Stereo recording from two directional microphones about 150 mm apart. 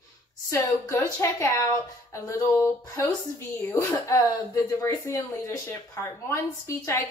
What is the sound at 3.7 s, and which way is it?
Speech, 20° left (ahead or behind).